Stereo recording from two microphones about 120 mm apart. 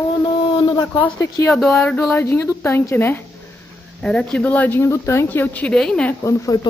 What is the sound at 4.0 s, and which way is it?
Speech, 5° left (ahead or behind).